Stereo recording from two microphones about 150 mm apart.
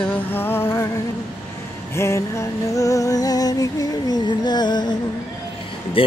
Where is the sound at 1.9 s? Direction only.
20° left (ahead or behind).